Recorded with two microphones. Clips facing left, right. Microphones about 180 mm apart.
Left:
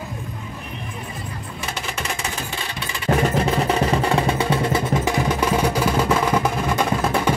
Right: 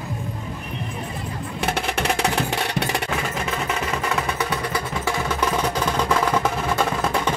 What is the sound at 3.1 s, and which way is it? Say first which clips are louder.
Music: left 7 dB; 35° left (ahead or behind).